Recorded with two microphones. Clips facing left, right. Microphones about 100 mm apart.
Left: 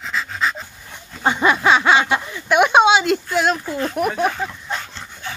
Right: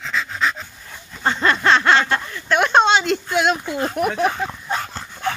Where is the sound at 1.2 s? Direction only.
10° left (ahead or behind).